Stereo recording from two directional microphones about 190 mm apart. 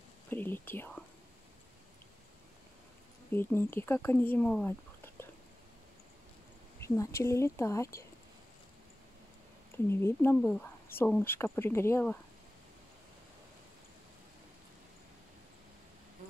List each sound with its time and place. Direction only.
0.3 s speech: 10° left (ahead or behind)
3.3 s speech: 10° left (ahead or behind)
6.8 s speech: 15° left (ahead or behind)
9.8 s speech: 10° left (ahead or behind)